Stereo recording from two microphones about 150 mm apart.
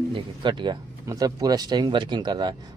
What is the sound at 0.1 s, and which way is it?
Speech, 30° right (ahead or behind).